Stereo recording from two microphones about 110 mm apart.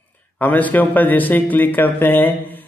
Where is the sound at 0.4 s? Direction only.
15° left (ahead or behind).